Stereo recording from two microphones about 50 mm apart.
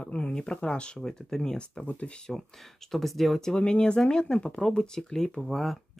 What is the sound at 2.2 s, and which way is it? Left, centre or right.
Speech, centre.